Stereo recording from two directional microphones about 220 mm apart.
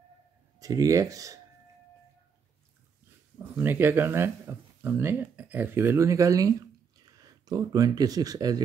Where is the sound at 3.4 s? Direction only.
10° right (ahead or behind).